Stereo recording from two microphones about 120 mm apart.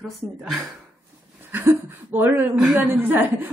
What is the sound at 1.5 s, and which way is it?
A woman's voice, 15° right (ahead or behind).